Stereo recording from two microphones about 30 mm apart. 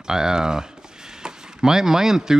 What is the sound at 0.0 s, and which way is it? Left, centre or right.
Speech, right.